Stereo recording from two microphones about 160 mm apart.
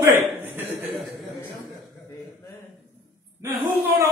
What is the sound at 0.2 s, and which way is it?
Chuckle, 15° right (ahead or behind).